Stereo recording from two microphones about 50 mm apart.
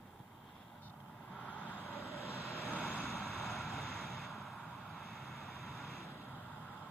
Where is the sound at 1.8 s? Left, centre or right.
Left.